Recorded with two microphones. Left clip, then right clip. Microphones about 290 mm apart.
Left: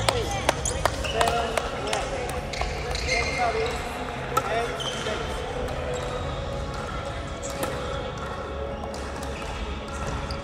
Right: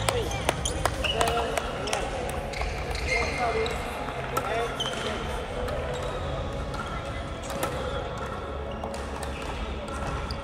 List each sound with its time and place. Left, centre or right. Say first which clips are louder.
0.0 s basketball bounce: left 3 dB; left